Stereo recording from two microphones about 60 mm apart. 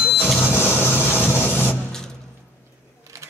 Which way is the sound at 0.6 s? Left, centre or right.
Left.